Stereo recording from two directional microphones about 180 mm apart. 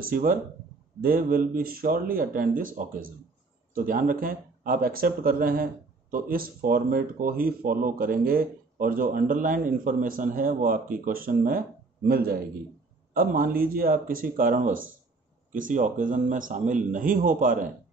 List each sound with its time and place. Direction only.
0.0 s speech: 50° right (ahead or behind)